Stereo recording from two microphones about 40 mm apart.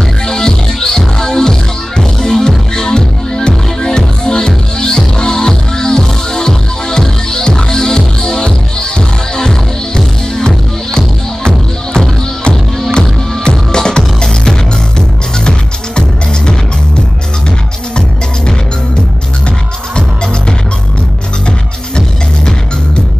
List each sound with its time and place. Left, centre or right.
0.3 s music: centre